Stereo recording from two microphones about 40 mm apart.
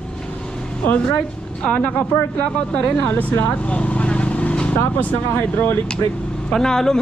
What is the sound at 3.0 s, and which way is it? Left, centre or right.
Speech, left.